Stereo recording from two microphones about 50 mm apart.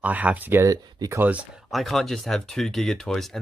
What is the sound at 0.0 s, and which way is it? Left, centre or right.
Speech, right.